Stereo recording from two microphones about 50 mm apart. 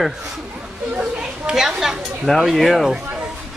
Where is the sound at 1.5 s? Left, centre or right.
Centre.